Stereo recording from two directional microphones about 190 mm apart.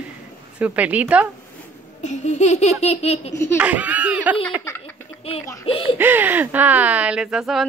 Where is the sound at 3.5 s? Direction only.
10° right (ahead or behind).